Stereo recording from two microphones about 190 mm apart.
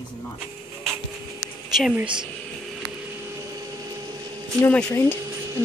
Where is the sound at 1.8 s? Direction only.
5° right (ahead or behind).